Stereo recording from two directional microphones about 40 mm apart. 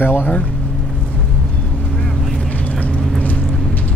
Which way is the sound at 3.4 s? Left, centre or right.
Centre.